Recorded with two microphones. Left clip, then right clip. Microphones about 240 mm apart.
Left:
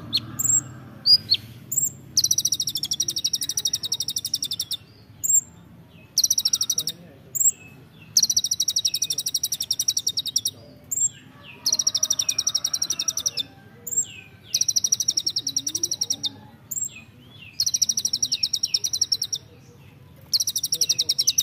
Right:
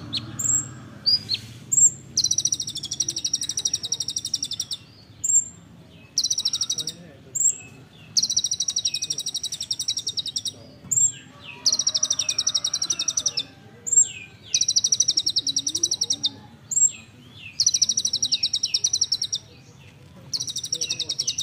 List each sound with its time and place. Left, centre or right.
1.9 s bird vocalization: left
4.2 s bird: left
6.1 s bird vocalization: left
8.1 s bird vocalization: left
11.6 s chirp: centre
14.5 s bird: centre
17.6 s chirp: centre
20.2 s bird: left